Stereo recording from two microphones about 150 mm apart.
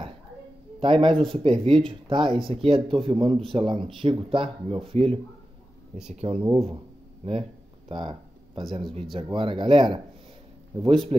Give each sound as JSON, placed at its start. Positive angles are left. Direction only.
{"t": 0.7, "sound": "speech", "side_deg": -35}
{"t": 7.9, "sound": "a sound", "side_deg": -30}
{"t": 9.1, "sound": "speech", "side_deg": -35}